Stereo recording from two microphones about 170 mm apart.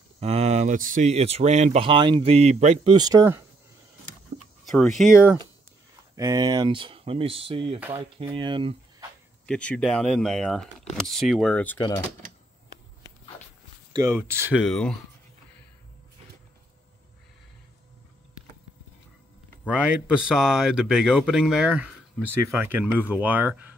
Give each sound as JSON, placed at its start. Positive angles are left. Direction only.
{"t": 0.2, "sound": "speech", "side_deg": -40}
{"t": 2.9, "sound": "speech", "side_deg": -25}
{"t": 4.6, "sound": "speech", "side_deg": 0}
{"t": 6.1, "sound": "speech", "side_deg": -20}
{"t": 9.5, "sound": "speech", "side_deg": 5}
{"t": 13.9, "sound": "speech", "side_deg": -15}
{"t": 14.6, "sound": "speech", "side_deg": 5}
{"t": 19.7, "sound": "speech", "side_deg": -5}